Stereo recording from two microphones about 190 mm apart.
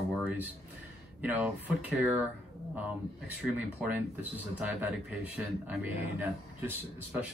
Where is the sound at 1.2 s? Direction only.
10° right (ahead or behind).